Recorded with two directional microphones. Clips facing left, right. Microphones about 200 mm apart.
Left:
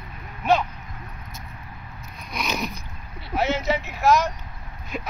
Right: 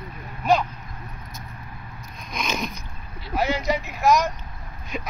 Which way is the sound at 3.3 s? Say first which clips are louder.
Even; 10° right (ahead or behind).